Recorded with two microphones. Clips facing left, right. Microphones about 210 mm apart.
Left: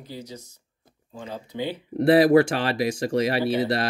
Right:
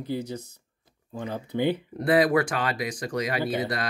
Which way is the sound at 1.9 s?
25° left (ahead or behind).